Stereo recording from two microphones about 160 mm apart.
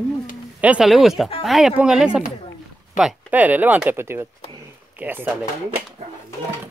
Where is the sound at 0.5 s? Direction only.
5° right (ahead or behind).